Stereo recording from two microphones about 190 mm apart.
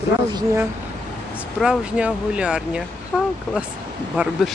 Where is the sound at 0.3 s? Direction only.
20° right (ahead or behind).